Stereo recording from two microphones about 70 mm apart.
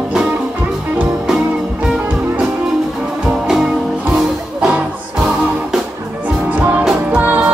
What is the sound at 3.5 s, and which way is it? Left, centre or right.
Music, centre.